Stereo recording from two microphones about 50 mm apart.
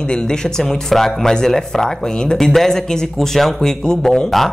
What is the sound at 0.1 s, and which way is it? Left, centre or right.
Speech, centre.